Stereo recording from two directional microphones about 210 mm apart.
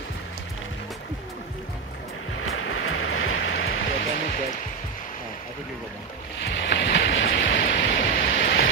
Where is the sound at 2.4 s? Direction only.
75° left (ahead or behind).